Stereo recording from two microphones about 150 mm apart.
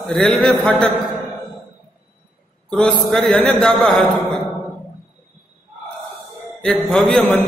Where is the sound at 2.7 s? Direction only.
5° left (ahead or behind).